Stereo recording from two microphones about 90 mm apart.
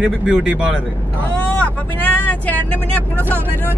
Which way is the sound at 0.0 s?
5° right (ahead or behind).